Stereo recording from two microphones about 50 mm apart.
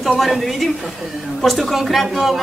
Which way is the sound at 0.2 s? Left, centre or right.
Centre.